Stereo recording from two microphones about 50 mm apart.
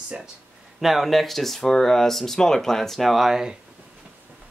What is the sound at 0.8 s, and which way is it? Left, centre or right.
Speech, centre.